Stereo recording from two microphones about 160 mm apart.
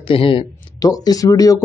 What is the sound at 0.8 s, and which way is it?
Speech, 20° left (ahead or behind).